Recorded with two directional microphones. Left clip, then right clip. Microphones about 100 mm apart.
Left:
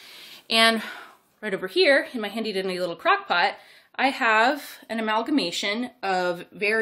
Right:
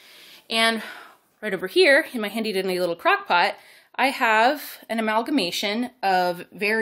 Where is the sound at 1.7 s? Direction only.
90° right.